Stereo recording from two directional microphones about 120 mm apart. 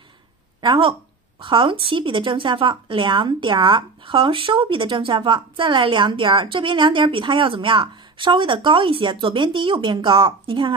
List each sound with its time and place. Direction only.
0.6 s speech: 45° right (ahead or behind)